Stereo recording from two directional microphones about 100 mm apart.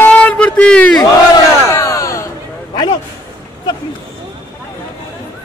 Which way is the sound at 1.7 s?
30° left (ahead or behind).